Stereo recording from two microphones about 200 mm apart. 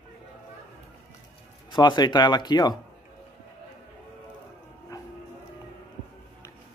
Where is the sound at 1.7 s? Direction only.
20° left (ahead or behind).